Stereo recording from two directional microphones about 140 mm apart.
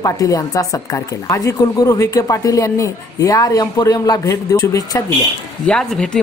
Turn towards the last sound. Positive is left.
turn(degrees=5)  # may be behind; listen again after turning